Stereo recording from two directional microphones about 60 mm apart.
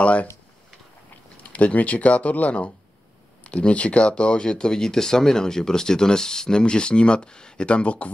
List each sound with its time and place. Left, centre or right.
0.0 s speech: left
1.4 s speech: left